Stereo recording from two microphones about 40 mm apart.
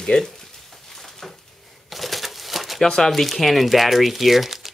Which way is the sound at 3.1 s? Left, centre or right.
Centre.